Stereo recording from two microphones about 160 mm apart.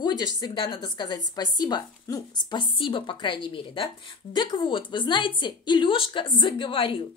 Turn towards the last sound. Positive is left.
turn(degrees=30)  # may be behind; listen again after turning